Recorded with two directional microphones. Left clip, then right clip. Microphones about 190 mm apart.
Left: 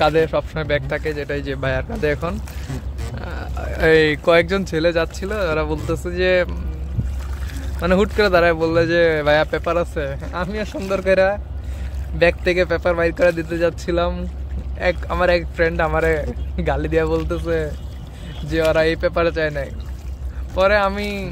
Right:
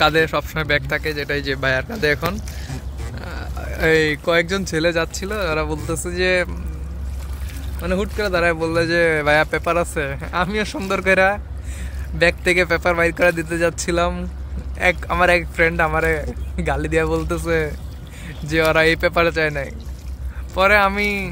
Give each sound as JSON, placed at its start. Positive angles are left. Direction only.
{"t": 0.0, "sound": "speech", "side_deg": 0}
{"t": 7.8, "sound": "speech", "side_deg": 20}
{"t": 8.5, "sound": "speech", "side_deg": 5}
{"t": 17.5, "sound": "speech", "side_deg": -15}